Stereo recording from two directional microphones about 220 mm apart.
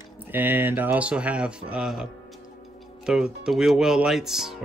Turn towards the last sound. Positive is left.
turn(degrees=0)  # may be behind; listen again after turning